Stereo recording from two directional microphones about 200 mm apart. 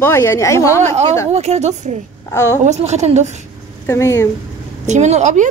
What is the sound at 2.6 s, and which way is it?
Speech, 35° right (ahead or behind).